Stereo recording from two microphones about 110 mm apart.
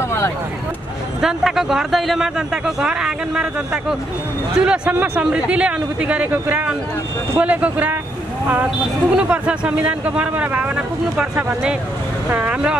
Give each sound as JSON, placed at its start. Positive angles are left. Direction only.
{"t": 0.0, "sound": "vehicle", "side_deg": 25}
{"t": 1.2, "sound": "a man's voice", "side_deg": -5}